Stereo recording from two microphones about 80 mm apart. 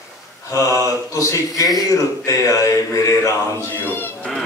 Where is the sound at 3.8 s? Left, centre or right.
Left.